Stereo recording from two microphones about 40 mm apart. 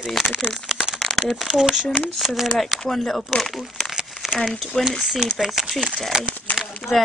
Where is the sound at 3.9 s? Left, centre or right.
Centre.